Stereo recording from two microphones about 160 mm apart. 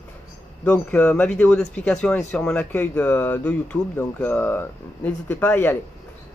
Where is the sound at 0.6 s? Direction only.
5° left (ahead or behind).